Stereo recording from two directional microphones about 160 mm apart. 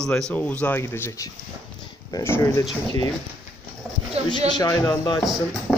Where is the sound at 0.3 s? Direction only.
10° left (ahead or behind).